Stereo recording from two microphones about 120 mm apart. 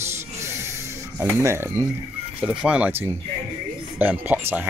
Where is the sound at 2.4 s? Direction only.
10° right (ahead or behind).